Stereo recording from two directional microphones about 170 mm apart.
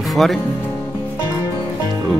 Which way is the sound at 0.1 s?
Centre (ahead or behind).